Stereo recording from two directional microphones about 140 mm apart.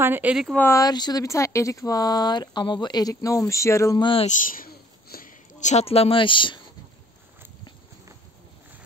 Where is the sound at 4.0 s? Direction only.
40° left (ahead or behind).